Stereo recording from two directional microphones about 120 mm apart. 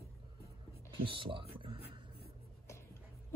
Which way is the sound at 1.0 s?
45° right (ahead or behind).